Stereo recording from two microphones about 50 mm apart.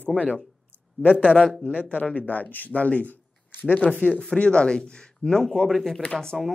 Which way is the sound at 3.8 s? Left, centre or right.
Left.